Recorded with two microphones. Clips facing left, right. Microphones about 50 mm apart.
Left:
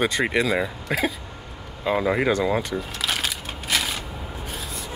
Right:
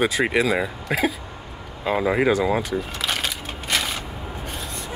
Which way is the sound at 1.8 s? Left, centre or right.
Centre.